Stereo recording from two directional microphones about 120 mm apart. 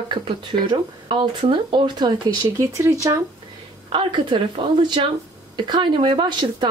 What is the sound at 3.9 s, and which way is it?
A woman's voice, 45° right (ahead or behind).